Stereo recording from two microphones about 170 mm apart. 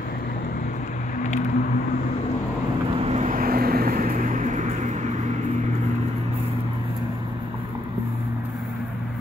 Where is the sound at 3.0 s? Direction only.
40° right (ahead or behind).